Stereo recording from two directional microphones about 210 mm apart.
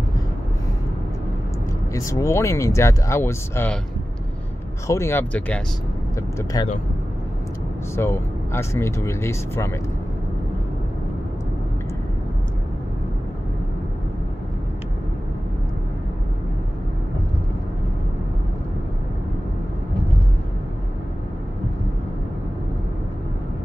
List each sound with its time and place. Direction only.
2.0 s speech: 15° left (ahead or behind)
4.8 s speech: 15° left (ahead or behind)
7.9 s speech: 10° left (ahead or behind)